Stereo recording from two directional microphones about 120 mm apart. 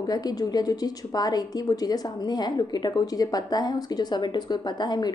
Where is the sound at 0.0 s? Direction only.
35° left (ahead or behind).